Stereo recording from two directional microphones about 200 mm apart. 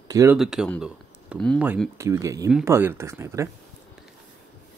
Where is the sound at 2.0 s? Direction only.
15° right (ahead or behind).